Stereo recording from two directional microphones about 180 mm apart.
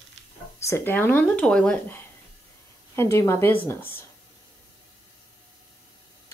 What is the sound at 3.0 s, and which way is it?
Speech, 15° left (ahead or behind).